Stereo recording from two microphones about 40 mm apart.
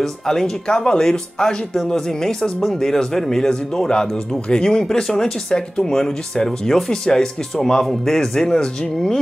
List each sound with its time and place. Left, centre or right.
0.0 s speech: centre
0.7 s speech: left